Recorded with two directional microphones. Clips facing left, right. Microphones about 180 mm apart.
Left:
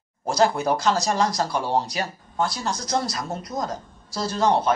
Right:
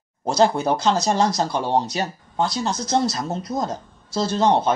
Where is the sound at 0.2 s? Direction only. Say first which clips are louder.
Right 2 dB; 25° right (ahead or behind).